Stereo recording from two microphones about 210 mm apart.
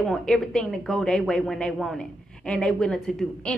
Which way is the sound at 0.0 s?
Centre (ahead or behind).